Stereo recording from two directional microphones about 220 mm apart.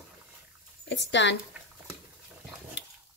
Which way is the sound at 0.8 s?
55° left (ahead or behind).